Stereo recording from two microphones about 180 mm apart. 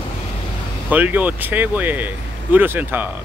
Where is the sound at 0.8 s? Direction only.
10° right (ahead or behind).